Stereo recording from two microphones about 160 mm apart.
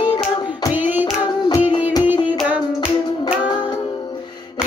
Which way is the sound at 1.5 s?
30° left (ahead or behind).